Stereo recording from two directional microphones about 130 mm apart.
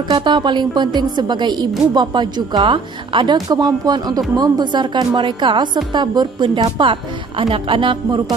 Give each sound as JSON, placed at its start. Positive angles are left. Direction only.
{"t": 0.1, "sound": "a woman's voice", "side_deg": -35}